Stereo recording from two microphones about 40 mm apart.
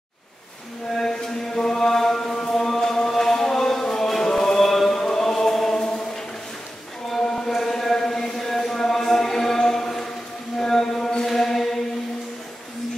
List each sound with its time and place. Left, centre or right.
0.9 s chant: centre
3.8 s music: centre
4.1 s chant: centre
5.8 s chant: left
7.2 s a sound: centre
11.2 s mantra: centre